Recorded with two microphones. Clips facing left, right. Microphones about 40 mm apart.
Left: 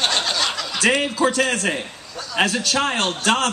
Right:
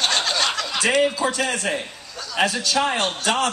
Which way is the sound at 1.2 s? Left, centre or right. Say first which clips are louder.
Left 4 dB; left.